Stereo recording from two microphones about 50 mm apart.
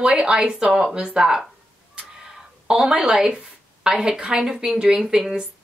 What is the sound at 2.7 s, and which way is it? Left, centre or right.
A woman's voice, centre.